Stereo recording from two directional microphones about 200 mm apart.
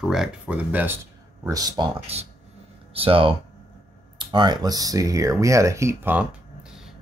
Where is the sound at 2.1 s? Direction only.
30° right (ahead or behind).